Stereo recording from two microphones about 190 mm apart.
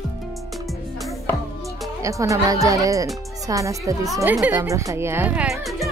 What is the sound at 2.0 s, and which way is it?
A woman's voice, 15° right (ahead or behind).